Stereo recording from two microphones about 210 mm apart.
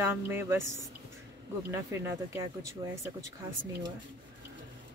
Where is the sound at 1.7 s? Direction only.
10° right (ahead or behind).